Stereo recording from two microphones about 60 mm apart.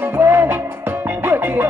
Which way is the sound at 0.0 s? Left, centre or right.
Right.